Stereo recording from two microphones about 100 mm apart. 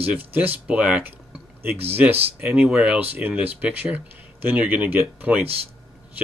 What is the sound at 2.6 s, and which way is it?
Speech, 5° right (ahead or behind).